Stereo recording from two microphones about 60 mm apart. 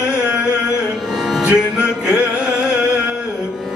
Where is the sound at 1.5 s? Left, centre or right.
Right.